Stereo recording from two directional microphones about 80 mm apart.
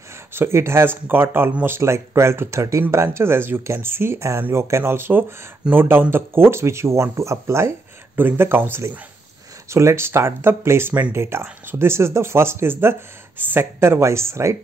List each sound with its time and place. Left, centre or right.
0.3 s speech: right
1.8 s speech: right